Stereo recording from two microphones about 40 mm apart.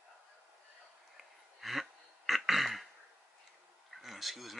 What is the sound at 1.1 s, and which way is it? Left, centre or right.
Throat clearing, centre.